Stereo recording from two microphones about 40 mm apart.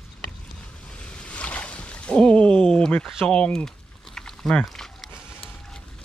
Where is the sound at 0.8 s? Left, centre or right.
Left.